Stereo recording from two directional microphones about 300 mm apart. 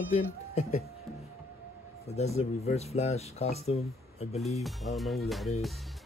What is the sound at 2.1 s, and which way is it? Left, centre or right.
Speech, left.